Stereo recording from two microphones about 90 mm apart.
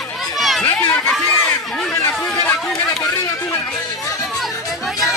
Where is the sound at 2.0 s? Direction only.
20° left (ahead or behind).